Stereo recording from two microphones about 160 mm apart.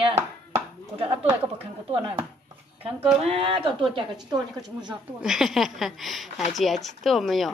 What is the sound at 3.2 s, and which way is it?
Speech, 40° right (ahead or behind).